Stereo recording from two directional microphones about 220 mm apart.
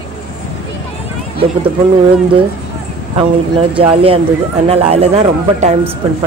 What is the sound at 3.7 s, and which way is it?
Speech, 25° right (ahead or behind).